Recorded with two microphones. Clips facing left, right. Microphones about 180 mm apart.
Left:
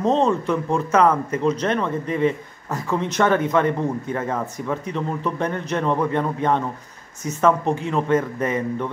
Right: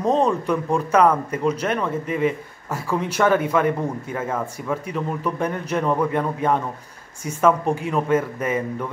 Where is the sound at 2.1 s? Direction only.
30° left (ahead or behind).